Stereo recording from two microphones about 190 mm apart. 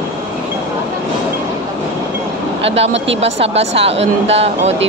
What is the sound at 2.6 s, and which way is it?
Speech, 35° right (ahead or behind).